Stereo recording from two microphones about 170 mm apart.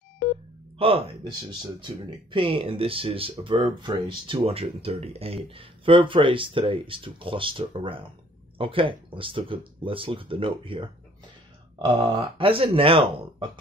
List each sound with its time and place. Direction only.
0.7 s speech: 35° right (ahead or behind)